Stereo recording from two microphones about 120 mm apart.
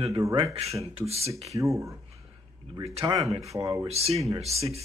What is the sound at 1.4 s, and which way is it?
Speech, 25° right (ahead or behind).